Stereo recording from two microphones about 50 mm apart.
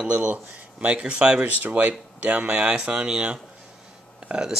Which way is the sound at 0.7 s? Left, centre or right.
Right.